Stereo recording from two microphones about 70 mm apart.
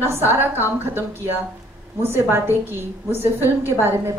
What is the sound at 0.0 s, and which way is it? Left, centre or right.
A woman's voice, right.